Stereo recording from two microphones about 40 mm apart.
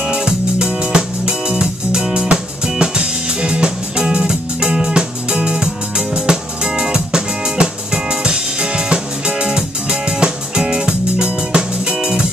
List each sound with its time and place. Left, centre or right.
0.0 s music: right
12.0 s music: centre